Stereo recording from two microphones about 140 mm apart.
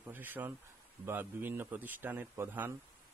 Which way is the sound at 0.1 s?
15° right (ahead or behind).